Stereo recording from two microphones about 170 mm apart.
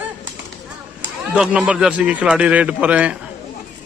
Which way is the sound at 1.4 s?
5° right (ahead or behind).